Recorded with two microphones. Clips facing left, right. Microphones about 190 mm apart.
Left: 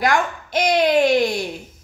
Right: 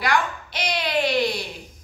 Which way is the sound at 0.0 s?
45° left (ahead or behind).